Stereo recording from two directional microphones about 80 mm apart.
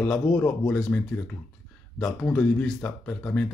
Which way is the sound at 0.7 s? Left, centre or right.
Centre.